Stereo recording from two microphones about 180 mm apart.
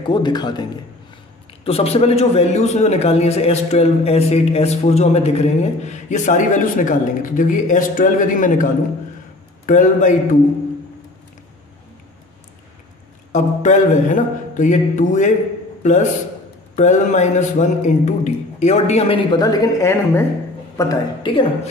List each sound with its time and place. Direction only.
0.0 s a man's voice: 25° left (ahead or behind)
1.6 s a man's voice: 35° left (ahead or behind)
9.7 s speech: 45° left (ahead or behind)
13.3 s a man's voice: 45° left (ahead or behind); by 21.5 s 30° left (ahead or behind)